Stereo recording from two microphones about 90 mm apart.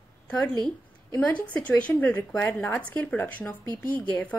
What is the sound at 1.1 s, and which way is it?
A woman's voice, 15° left (ahead or behind).